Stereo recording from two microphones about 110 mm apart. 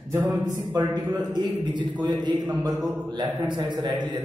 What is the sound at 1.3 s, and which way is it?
A man's voice, 45° right (ahead or behind).